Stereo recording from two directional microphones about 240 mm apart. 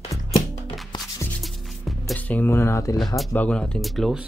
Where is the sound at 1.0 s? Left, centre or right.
Centre.